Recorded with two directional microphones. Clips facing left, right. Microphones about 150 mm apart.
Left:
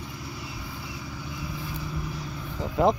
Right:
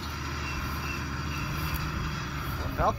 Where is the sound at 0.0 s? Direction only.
90° right.